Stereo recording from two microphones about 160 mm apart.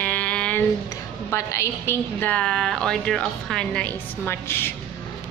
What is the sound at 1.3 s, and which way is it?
A woman's voice, 15° left (ahead or behind).